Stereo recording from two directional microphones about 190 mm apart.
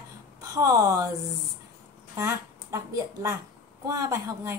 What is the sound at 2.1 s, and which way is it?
A woman's voice, 15° right (ahead or behind).